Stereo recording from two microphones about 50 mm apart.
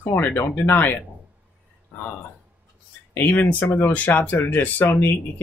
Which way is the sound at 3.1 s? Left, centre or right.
Left.